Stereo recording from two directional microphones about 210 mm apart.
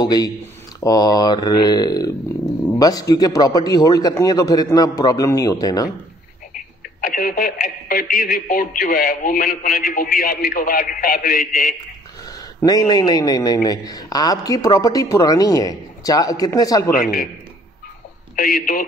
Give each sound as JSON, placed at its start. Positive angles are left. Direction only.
{"t": 0.0, "sound": "a man's voice", "side_deg": 20}
{"t": 6.5, "sound": "speech", "side_deg": 40}
{"t": 12.5, "sound": "a man's voice", "side_deg": 15}
{"t": 18.3, "sound": "speech", "side_deg": 40}